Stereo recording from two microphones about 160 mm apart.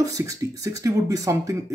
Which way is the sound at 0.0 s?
20° right (ahead or behind).